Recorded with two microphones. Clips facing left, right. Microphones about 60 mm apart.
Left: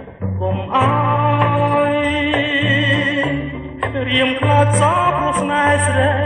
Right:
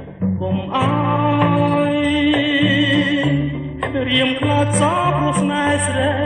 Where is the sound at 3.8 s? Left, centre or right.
Centre.